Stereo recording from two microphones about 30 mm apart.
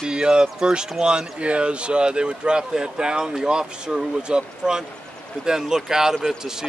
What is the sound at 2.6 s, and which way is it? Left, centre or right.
Speech, right.